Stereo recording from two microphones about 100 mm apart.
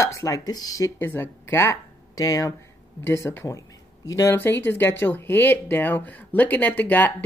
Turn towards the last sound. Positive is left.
turn(degrees=20)  # may be behind; listen again after turning